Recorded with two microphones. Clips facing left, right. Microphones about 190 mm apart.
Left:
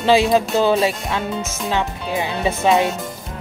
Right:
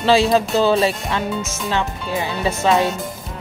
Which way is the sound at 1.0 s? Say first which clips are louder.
Right 1 dB; centre (ahead or behind).